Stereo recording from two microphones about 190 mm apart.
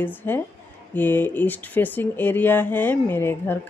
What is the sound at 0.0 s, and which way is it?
Speech, 10° left (ahead or behind).